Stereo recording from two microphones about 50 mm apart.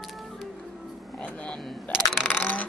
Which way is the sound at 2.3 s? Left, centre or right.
Left.